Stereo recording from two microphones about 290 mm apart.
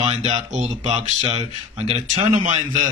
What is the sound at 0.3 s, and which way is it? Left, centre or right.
A man's voice, right.